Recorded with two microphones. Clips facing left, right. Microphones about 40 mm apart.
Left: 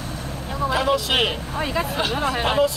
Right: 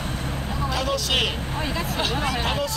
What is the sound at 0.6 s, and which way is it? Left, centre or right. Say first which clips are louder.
Vehicle: left 6 dB; left.